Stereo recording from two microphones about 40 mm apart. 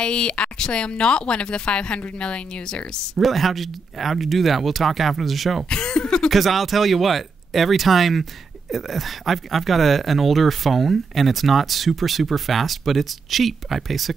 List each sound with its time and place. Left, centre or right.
0.0 s speech: left
3.2 s speech: centre
5.7 s a sound: left
6.3 s speech: centre